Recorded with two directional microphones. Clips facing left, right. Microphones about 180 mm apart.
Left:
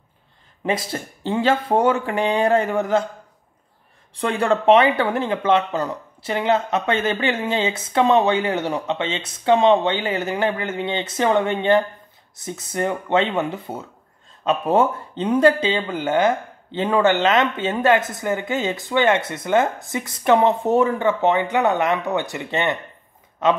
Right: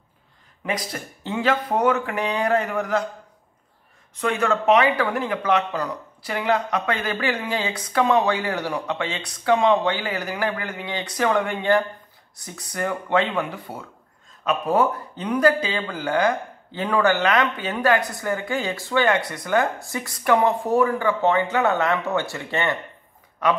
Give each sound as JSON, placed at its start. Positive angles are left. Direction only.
{"t": 0.7, "sound": "speech", "side_deg": 25}
{"t": 4.1, "sound": "speech", "side_deg": 30}